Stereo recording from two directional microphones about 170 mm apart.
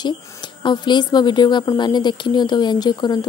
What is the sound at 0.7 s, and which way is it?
Speech, 25° left (ahead or behind).